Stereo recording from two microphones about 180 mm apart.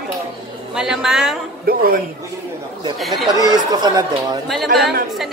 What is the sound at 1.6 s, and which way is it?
Speech, 55° right (ahead or behind).